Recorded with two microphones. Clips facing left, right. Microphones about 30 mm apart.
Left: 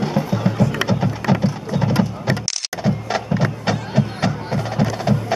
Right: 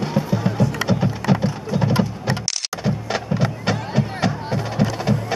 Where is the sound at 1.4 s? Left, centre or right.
Centre.